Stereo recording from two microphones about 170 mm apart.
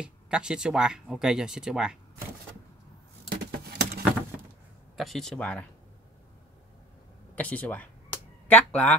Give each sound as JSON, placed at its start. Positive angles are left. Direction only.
{"t": 0.0, "sound": "speech", "side_deg": -5}
{"t": 3.3, "sound": "typing", "side_deg": -70}
{"t": 4.9, "sound": "speech", "side_deg": 0}
{"t": 7.3, "sound": "speech", "side_deg": 10}